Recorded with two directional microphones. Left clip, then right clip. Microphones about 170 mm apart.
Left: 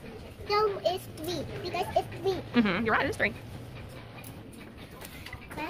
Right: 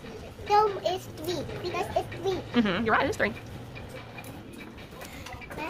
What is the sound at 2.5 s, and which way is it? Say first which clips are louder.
Speech: right 1 dB; 15° left (ahead or behind).